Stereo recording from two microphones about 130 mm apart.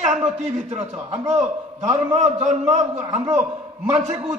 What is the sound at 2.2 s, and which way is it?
Speech, 60° right (ahead or behind).